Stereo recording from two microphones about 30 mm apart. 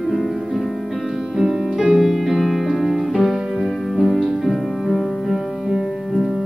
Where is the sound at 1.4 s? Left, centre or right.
Centre.